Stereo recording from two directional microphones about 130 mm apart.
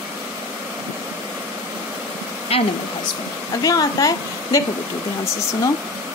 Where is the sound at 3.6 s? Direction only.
30° left (ahead or behind).